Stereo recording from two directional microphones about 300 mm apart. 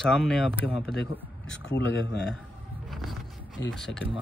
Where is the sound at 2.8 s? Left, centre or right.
Centre.